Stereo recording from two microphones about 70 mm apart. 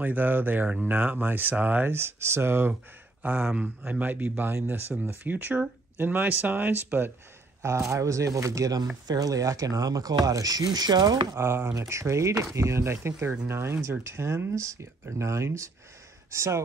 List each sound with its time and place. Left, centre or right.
0.0 s speech: right
2.7 s speech: right
7.6 s speech: right
9.0 s speech: right
11.3 s speech: right
11.7 s speech: right